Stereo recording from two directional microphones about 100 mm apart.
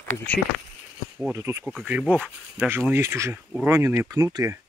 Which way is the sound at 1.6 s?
5° right (ahead or behind).